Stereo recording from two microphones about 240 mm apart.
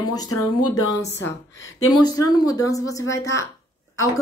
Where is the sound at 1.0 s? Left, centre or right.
Left.